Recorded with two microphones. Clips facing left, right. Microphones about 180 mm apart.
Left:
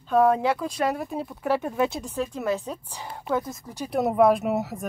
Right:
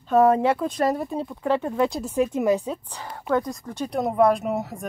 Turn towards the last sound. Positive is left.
turn(degrees=0)  # may be behind; listen again after turning